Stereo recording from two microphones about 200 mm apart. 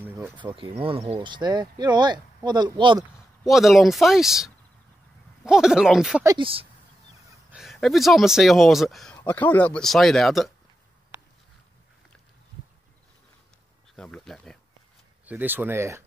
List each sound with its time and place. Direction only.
0.4 s speech: 25° right (ahead or behind)
3.4 s speech: centre (ahead or behind)
6.2 s speech: 25° right (ahead or behind)
7.5 s speech: centre (ahead or behind)
13.9 s a sound: 5° left (ahead or behind)
15.2 s speech: 10° right (ahead or behind)